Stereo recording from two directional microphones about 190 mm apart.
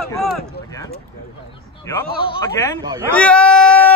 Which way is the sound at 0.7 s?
15° left (ahead or behind).